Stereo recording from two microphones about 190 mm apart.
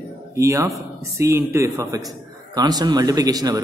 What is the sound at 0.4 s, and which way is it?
A man's voice, 15° right (ahead or behind).